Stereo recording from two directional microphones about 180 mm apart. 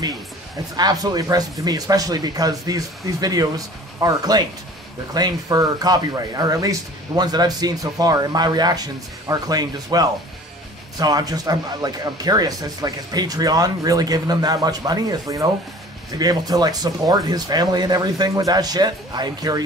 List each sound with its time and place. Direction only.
0.7 s speech: 20° right (ahead or behind)